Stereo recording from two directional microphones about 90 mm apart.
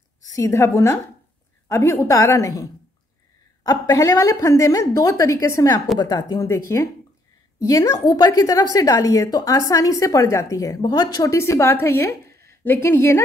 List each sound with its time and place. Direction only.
0.3 s a woman's voice: 35° left (ahead or behind)
5.9 s speech: 50° left (ahead or behind)
6.4 s a woman's voice: 30° left (ahead or behind)
8.0 s speech: 55° left (ahead or behind)
8.3 s a woman's voice: 40° left (ahead or behind)
10.8 s speech: 50° left (ahead or behind)
11.3 s a woman's voice: 30° left (ahead or behind)